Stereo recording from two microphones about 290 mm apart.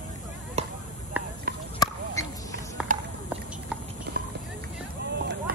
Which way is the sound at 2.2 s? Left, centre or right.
Centre.